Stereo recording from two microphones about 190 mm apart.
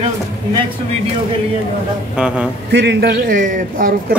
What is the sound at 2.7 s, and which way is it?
A man's voice, 60° right (ahead or behind).